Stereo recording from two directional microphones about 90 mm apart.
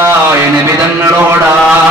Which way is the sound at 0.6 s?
30° right (ahead or behind).